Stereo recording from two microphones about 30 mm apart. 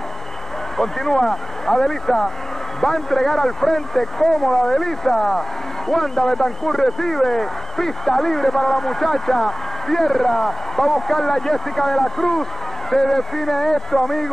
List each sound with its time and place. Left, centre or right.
0.7 s speech: centre